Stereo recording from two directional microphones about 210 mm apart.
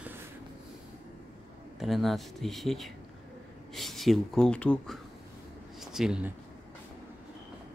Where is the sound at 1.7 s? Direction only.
Centre (ahead or behind).